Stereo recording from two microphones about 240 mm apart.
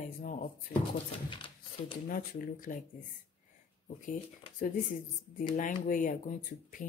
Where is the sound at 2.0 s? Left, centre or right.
Left.